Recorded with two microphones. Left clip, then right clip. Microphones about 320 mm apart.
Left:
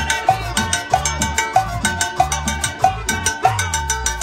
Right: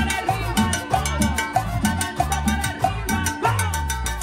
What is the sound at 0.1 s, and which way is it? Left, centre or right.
Salsa music, left.